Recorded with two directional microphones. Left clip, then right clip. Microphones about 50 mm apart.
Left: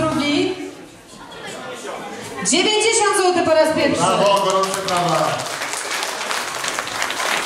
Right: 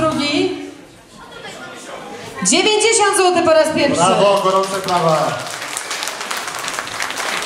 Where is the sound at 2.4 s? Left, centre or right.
Right.